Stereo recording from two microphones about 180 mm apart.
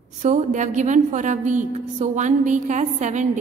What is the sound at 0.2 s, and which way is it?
A woman's voice, 40° right (ahead or behind).